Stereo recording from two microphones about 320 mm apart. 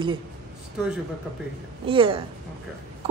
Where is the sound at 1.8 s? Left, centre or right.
Centre.